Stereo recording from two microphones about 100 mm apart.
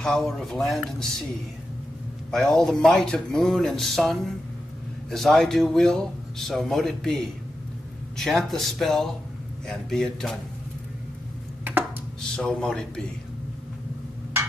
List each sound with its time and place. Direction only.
0.0 s a man's voice: 5° left (ahead or behind)
2.3 s a man's voice: 5° left (ahead or behind)
11.7 s a sound: 20° right (ahead or behind)
12.4 s a man's voice: 5° left (ahead or behind)